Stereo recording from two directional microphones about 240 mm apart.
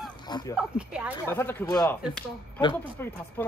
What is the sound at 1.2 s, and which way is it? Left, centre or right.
Speech, centre.